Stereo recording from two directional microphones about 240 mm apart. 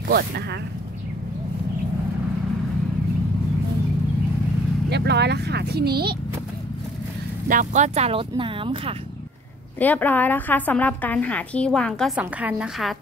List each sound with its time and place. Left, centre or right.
0.1 s speech: right
4.8 s speech: right
7.4 s speech: right
9.8 s a woman's voice: centre